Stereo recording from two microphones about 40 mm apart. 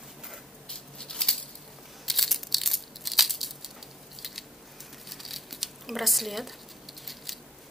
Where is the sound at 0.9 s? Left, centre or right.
Centre.